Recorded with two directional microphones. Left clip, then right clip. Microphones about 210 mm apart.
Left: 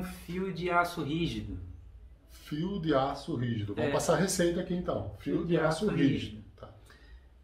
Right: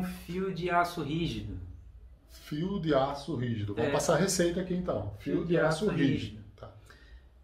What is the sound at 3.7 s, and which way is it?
Speech, 15° left (ahead or behind).